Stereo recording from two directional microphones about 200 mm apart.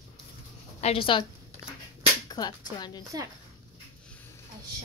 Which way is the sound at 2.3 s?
20° left (ahead or behind).